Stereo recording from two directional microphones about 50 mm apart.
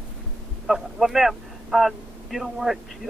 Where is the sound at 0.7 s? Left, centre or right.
Centre.